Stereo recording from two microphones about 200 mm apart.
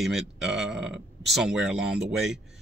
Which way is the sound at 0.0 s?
Centre (ahead or behind).